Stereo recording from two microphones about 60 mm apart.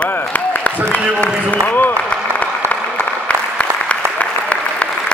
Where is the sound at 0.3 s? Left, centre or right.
Left.